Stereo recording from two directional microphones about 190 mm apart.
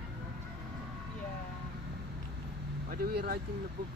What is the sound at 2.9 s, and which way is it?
Vehicle, 55° right (ahead or behind).